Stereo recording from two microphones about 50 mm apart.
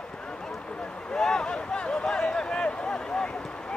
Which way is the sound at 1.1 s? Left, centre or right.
Centre.